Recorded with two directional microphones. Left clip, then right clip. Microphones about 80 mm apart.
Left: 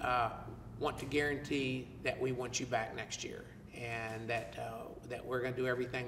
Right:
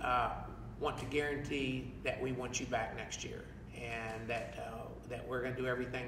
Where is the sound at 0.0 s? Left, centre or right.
Right.